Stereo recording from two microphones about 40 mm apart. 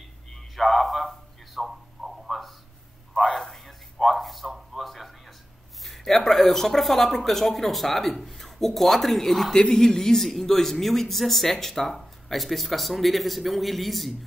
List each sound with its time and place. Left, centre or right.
0.3 s a sound: centre
5.9 s speech: centre
9.5 s speech: centre